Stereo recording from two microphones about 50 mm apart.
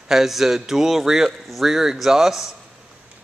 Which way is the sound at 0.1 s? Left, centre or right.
Centre.